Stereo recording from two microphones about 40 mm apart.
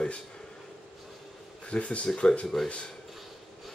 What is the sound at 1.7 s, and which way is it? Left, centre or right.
Speech, left.